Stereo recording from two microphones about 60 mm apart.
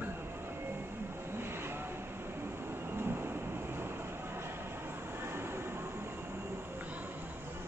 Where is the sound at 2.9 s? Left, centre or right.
Right.